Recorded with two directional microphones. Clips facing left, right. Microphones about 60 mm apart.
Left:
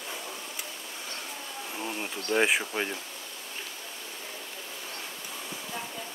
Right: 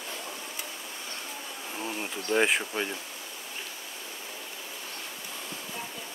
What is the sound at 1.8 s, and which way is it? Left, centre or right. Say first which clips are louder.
Speech: right 1 dB; centre.